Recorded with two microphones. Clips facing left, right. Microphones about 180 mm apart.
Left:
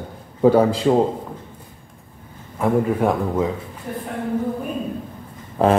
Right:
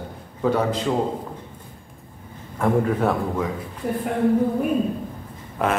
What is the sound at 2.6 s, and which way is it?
Speech, 10° left (ahead or behind).